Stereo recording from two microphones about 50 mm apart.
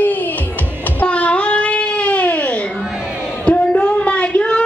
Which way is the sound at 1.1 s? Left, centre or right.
Left.